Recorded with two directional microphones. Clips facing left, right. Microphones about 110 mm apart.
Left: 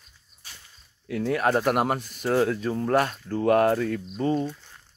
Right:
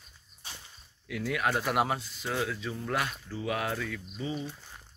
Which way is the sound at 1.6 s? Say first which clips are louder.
Left 5 dB; 50° left (ahead or behind).